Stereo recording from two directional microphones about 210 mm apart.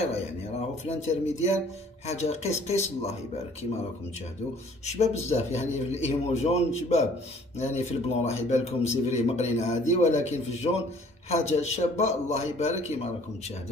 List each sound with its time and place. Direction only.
0.8 s a man's voice: 30° left (ahead or behind)
4.8 s a man's voice: 30° left (ahead or behind)